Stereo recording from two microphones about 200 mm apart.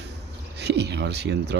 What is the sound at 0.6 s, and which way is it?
Speech, 55° right (ahead or behind).